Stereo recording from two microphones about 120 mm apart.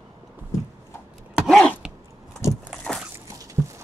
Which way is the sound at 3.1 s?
25° right (ahead or behind).